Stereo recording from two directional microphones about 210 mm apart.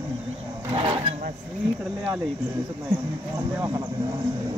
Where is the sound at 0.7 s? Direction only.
25° right (ahead or behind).